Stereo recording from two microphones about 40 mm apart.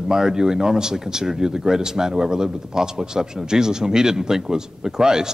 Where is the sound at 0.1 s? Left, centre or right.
Centre.